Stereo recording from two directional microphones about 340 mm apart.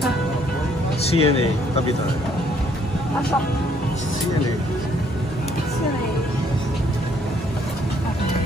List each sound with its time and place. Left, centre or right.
1.0 s speech: centre